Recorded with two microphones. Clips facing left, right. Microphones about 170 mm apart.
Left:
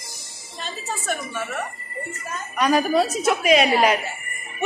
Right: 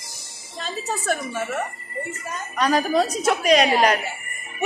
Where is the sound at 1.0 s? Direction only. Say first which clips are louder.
Right 2 dB; 30° right (ahead or behind).